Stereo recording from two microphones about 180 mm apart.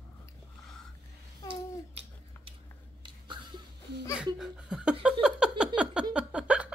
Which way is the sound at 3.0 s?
25° right (ahead or behind).